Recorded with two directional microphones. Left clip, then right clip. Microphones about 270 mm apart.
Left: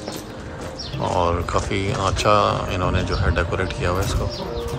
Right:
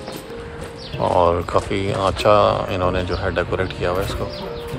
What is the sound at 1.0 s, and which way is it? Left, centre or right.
Speech, centre.